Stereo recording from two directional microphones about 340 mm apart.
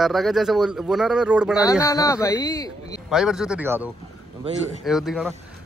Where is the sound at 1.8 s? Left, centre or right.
Centre.